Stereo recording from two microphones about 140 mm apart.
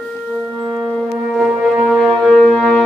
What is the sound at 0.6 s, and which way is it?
Shofar, 25° right (ahead or behind).